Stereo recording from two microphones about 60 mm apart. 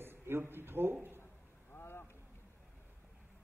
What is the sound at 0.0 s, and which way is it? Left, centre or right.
Speech, right.